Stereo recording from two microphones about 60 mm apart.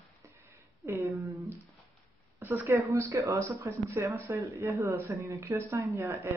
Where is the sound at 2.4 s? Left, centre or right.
Right.